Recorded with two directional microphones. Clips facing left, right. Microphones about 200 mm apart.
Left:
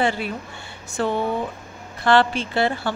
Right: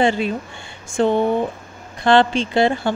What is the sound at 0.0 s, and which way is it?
Speech, 20° right (ahead or behind).